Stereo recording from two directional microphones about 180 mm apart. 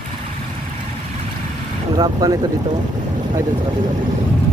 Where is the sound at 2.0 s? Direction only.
20° right (ahead or behind).